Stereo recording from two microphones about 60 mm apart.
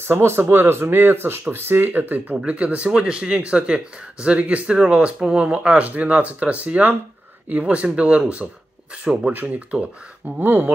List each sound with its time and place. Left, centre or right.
0.0 s speech: right; by 9.3 s centre
9.3 s speech: right